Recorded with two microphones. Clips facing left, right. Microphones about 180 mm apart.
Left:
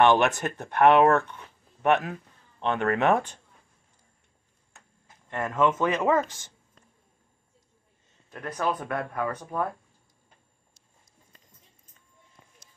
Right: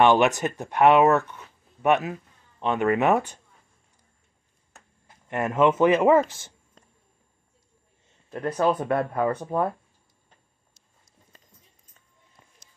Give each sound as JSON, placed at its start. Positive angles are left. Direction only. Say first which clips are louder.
{"t": 0.0, "sound": "speech", "louder": "right 2 dB", "side_deg": -10}
{"t": 5.3, "sound": "speech", "louder": "right 4 dB", "side_deg": -20}
{"t": 6.2, "sound": "speech", "louder": "right 1 dB", "side_deg": 15}
{"t": 8.3, "sound": "speech", "louder": "right 6 dB", "side_deg": -25}